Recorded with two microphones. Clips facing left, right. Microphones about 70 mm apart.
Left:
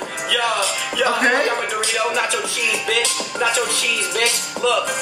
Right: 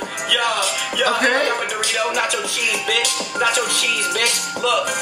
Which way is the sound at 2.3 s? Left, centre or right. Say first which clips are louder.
Left 1 dB; left.